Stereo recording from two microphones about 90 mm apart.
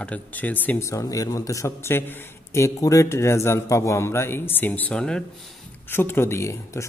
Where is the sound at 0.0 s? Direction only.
15° left (ahead or behind).